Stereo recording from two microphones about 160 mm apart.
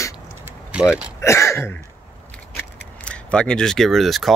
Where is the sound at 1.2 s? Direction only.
15° left (ahead or behind).